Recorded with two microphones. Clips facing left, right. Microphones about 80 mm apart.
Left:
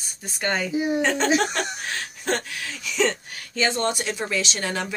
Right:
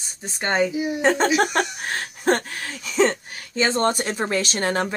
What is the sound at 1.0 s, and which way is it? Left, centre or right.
A woman's voice, right.